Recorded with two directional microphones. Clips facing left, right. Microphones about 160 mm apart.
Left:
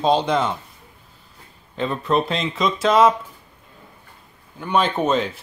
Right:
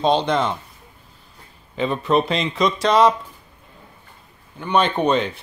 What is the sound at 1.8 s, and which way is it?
Speech, centre (ahead or behind).